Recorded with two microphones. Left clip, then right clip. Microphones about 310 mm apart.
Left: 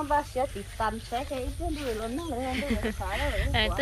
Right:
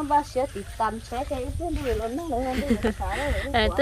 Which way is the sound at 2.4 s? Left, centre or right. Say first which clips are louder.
Right 3 dB; centre.